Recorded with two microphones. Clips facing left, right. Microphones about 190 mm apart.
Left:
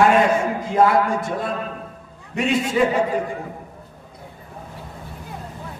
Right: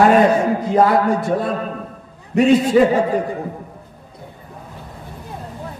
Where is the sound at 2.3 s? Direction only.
35° right (ahead or behind).